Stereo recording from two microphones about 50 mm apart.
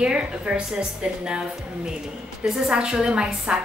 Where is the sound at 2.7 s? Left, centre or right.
Centre.